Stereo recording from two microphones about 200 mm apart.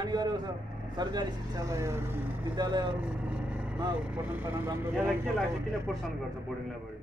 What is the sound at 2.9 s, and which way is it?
Vehicle, 5° right (ahead or behind).